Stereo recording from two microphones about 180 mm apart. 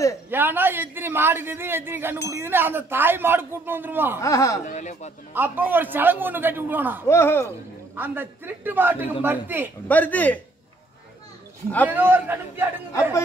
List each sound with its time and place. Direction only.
0.3 s speech: 10° right (ahead or behind)
4.2 s a man's voice: 15° left (ahead or behind)
4.6 s speech: 40° left (ahead or behind)
5.3 s speech: 10° right (ahead or behind)
7.1 s a man's voice: 15° left (ahead or behind)
7.9 s speech: 10° right (ahead or behind)
9.8 s a man's voice: 10° left (ahead or behind)
11.9 s speech: 10° right (ahead or behind)